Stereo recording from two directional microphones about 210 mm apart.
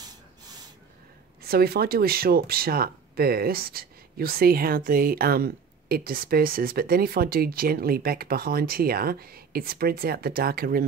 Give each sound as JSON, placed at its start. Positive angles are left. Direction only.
{"t": 1.4, "sound": "speech", "side_deg": -45}